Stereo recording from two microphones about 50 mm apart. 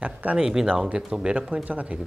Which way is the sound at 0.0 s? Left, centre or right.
Right.